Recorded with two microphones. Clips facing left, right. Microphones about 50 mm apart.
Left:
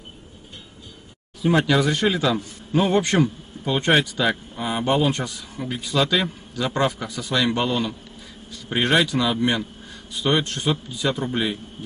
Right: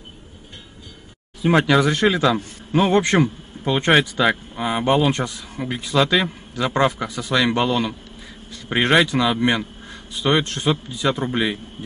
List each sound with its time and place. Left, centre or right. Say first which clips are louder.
1.4 s a man's voice: right 3 dB; right
7.5 s speech: right 3 dB; right